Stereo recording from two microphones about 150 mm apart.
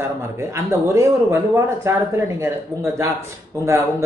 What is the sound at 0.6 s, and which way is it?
A man's voice, 15° right (ahead or behind).